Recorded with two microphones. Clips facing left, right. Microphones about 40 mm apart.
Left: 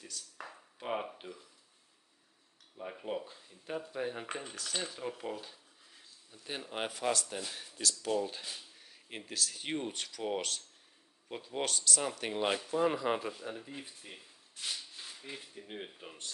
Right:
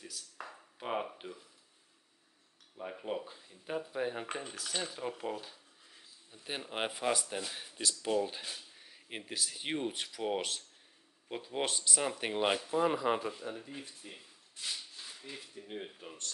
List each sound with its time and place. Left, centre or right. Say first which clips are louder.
0.0 s speech: even; centre
2.8 s speech: even; centre
6.3 s speech: right 1 dB; centre
13.8 s speech: even; centre
15.2 s speech: left 1 dB; centre
15.6 s speech: right 1 dB; centre